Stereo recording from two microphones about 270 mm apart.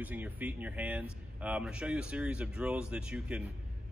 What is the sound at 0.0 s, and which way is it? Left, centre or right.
Speech, centre.